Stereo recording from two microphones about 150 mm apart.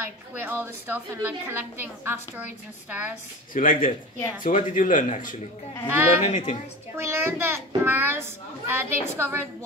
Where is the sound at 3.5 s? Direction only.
65° left (ahead or behind).